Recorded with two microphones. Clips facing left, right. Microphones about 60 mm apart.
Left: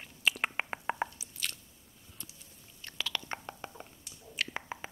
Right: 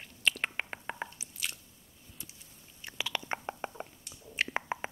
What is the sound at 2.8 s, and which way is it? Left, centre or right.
Chewing, centre.